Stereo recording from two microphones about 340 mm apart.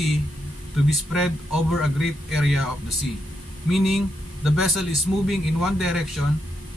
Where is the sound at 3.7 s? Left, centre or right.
Centre.